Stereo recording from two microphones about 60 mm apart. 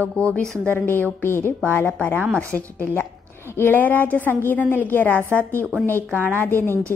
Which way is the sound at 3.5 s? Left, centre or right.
Left.